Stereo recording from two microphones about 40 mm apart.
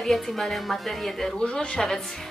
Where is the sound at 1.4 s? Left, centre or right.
Left.